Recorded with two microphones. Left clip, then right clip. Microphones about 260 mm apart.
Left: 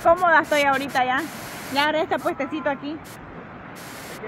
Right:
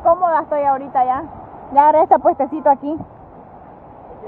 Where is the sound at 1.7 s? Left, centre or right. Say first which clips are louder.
Right 11 dB; centre.